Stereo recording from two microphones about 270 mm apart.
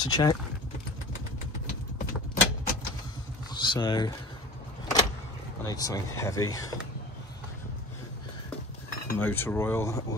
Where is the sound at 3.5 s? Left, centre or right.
Centre.